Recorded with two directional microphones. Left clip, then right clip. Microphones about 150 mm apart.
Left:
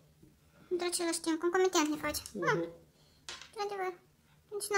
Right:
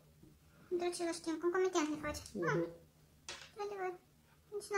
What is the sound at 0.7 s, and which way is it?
A child's voice, 45° left (ahead or behind).